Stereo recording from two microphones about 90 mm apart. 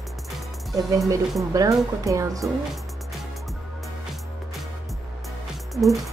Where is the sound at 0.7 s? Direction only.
35° right (ahead or behind).